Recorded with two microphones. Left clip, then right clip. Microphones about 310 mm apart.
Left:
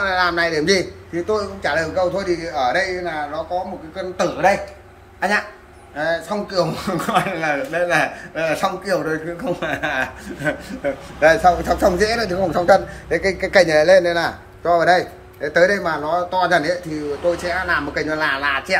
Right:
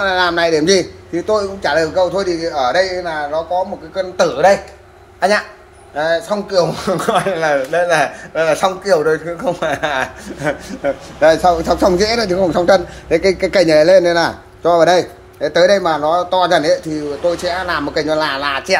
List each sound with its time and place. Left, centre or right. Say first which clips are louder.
0.0 s a man's voice: right 4 dB; right
5.9 s speech: right 5 dB; centre